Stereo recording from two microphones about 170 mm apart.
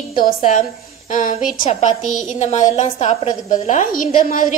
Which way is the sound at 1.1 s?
50° left (ahead or behind).